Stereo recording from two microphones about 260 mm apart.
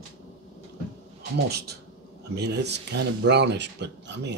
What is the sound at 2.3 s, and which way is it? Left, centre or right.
Speech, right.